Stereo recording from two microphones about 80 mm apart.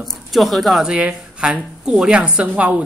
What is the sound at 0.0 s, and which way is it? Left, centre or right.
Pigeon, centre.